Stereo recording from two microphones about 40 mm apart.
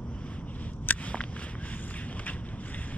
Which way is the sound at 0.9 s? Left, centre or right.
Left.